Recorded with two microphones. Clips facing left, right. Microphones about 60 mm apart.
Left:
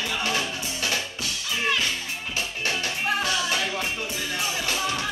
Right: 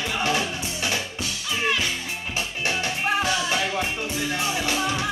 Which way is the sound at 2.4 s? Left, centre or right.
Right.